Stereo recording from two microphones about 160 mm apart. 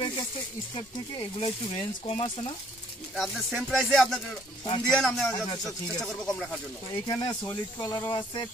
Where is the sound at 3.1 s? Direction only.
Centre (ahead or behind).